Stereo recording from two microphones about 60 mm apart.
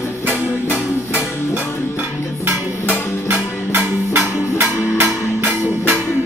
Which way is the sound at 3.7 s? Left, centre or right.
Right.